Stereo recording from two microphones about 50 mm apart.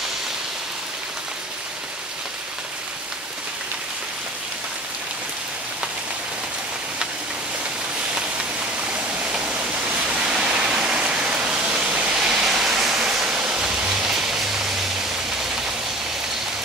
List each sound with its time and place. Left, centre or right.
8.8 s waterfall: centre